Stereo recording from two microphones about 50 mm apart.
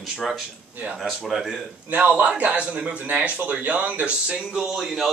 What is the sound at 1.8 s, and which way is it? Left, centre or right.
A man's voice, right.